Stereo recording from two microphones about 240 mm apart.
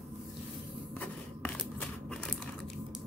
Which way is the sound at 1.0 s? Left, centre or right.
Centre.